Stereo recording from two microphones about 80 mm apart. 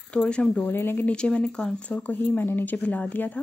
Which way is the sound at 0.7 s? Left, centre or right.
Left.